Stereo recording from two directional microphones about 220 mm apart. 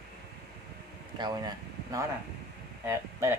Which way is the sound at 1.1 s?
20° right (ahead or behind).